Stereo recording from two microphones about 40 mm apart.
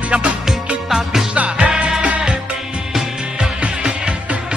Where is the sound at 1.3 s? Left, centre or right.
Right.